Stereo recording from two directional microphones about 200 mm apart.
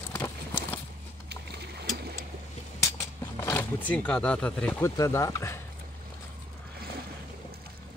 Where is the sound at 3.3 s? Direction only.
15° left (ahead or behind).